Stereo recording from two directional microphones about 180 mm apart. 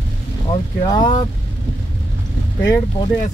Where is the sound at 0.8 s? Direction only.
25° left (ahead or behind).